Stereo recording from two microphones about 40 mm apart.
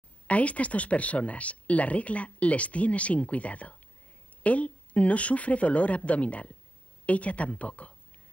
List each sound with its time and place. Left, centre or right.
0.3 s speech: left